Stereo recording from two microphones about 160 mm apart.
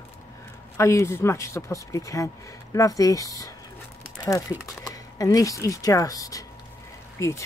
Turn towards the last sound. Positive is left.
turn(degrees=20)  # may be behind; listen again after turning